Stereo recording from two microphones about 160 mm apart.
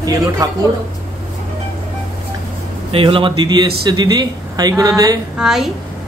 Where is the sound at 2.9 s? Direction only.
35° right (ahead or behind).